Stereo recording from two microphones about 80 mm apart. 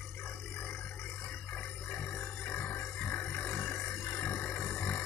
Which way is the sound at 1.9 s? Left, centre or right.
Left.